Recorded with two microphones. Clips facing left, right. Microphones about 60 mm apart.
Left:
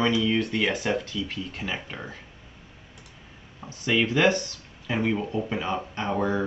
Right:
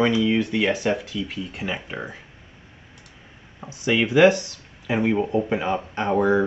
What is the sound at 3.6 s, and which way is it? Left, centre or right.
Speech, centre.